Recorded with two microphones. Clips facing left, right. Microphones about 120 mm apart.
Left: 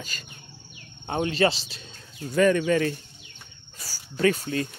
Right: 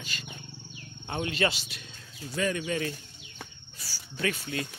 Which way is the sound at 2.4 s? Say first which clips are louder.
Left 9 dB; 55° left (ahead or behind).